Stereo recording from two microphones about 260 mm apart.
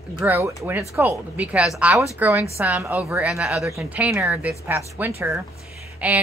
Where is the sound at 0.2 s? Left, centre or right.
Centre.